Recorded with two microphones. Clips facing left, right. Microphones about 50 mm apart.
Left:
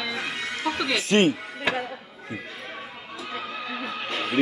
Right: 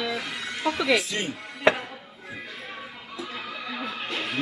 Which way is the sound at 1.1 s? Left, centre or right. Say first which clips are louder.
Left 11 dB; left.